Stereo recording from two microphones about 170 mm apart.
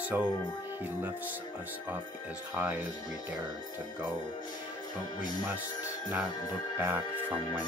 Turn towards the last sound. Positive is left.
turn(degrees=-10)  # may be behind; listen again after turning